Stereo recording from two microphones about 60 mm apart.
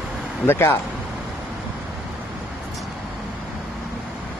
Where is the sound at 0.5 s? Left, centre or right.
Left.